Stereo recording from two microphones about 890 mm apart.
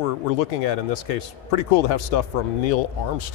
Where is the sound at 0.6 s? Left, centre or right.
Left.